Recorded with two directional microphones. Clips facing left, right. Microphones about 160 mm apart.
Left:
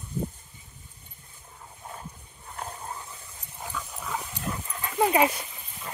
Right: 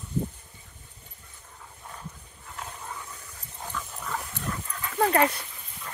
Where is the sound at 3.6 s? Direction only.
5° left (ahead or behind).